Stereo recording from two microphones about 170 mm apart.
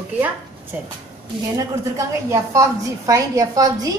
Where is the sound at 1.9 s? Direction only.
20° right (ahead or behind).